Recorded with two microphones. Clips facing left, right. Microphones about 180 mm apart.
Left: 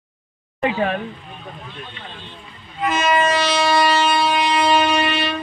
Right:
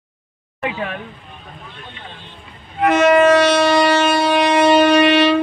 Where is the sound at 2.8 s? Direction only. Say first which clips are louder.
Right 7 dB; 65° right (ahead or behind).